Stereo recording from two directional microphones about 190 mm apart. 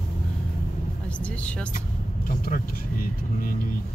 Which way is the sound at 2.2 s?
50° left (ahead or behind).